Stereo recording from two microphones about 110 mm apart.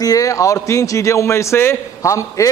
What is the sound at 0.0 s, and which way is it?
A man's voice, 30° left (ahead or behind).